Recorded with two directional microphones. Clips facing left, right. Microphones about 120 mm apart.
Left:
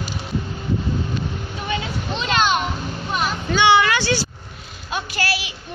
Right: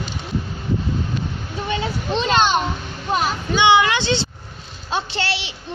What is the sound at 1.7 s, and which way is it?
Children playing, 35° right (ahead or behind).